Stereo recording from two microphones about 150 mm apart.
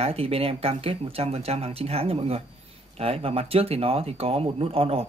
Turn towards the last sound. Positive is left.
turn(degrees=-40)  # may be behind; listen again after turning